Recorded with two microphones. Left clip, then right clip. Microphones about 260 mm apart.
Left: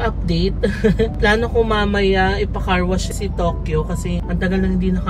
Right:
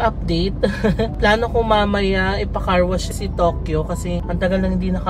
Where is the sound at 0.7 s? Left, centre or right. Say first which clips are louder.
Left 4 dB; centre.